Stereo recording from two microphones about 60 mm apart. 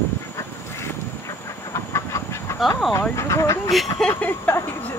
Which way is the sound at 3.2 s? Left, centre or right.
Left.